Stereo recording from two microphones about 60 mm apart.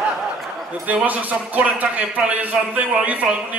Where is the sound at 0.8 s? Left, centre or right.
Right.